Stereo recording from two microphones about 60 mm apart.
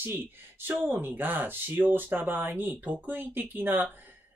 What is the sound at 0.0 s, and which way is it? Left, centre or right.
Speech, right.